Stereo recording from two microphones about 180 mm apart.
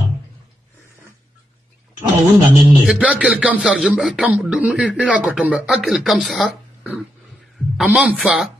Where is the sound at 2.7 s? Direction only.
5° right (ahead or behind).